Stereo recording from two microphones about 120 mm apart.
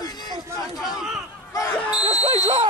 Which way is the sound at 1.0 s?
5° right (ahead or behind).